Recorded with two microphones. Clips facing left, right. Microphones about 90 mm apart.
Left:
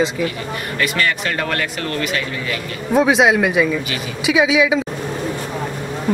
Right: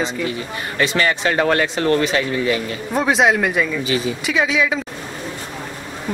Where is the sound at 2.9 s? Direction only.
Centre (ahead or behind).